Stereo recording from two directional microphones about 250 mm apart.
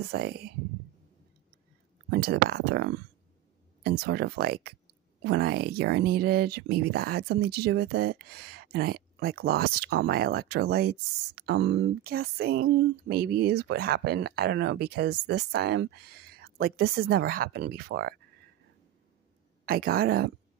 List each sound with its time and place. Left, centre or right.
0.1 s speech: right
2.0 s speech: right
19.6 s speech: right